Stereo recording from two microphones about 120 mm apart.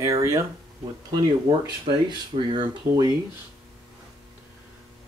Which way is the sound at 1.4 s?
45° right (ahead or behind).